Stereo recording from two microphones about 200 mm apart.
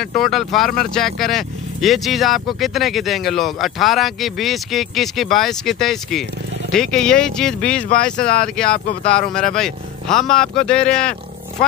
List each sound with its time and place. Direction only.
0.0 s speech: centre (ahead or behind)
7.9 s speech: 45° left (ahead or behind)
8.3 s speech: 5° left (ahead or behind)